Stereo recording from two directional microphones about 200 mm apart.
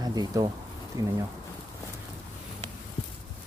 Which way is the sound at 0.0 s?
20° right (ahead or behind).